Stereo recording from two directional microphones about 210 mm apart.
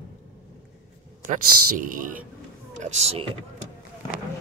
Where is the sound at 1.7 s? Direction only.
40° right (ahead or behind).